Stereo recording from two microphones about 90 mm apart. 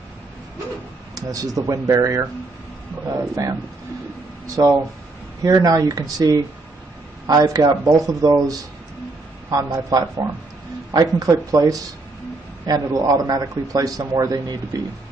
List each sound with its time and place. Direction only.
1.1 s speech: 40° right (ahead or behind)
4.6 s a man's voice: 40° right (ahead or behind)